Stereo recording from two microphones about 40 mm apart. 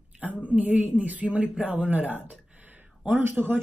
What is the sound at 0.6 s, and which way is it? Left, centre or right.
Speech, right.